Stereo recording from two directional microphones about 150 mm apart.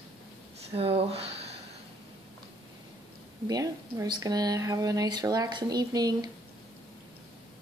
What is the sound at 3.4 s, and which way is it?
A woman's voice, 25° right (ahead or behind).